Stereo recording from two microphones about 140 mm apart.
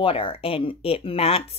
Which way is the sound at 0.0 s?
40° left (ahead or behind).